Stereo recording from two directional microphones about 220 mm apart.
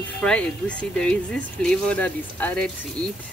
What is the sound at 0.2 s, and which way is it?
Speech, 5° left (ahead or behind).